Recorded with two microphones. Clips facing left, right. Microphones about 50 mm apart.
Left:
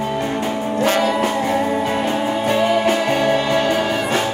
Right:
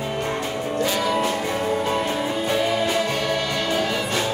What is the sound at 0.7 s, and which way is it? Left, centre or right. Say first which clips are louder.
Music: left 6 dB; left.